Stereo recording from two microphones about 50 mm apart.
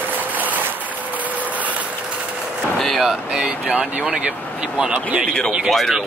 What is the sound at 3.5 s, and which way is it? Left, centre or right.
Speech, right.